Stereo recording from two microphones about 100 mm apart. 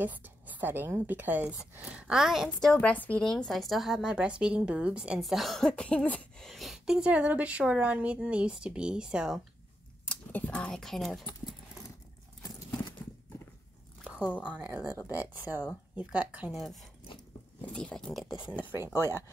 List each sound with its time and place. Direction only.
0.0 s speech: 15° right (ahead or behind)
2.7 s a woman's voice: 15° left (ahead or behind)
3.3 s speech: 5° left (ahead or behind)
5.2 s speech: centre (ahead or behind)
10.0 s speech: 15° left (ahead or behind)
14.0 s squish: 10° right (ahead or behind)
14.4 s speech: 10° right (ahead or behind)
17.7 s a woman's voice: 10° left (ahead or behind)
18.3 s speech: 5° right (ahead or behind)